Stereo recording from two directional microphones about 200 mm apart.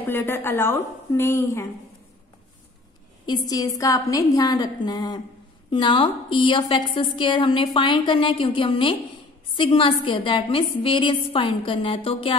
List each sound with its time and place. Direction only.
0.1 s a woman's voice: 10° left (ahead or behind)
3.3 s a woman's voice: 20° left (ahead or behind)